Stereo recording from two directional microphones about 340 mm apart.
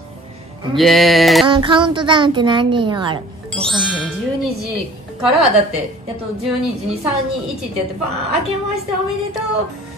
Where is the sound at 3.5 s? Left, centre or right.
Centre.